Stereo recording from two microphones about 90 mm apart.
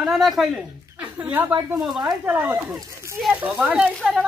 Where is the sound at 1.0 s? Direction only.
15° right (ahead or behind).